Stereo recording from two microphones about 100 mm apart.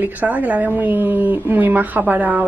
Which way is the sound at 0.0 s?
15° right (ahead or behind).